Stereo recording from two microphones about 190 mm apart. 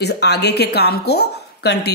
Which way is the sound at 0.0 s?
60° left (ahead or behind).